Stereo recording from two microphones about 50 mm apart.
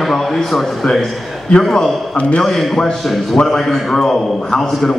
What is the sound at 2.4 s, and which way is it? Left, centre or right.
A man's voice, centre.